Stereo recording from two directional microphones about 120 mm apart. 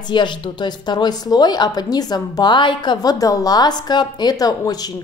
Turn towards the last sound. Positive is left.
turn(degrees=30)  # may be behind; listen again after turning